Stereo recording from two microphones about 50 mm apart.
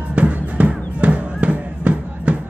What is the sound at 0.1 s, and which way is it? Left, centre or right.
Music, right.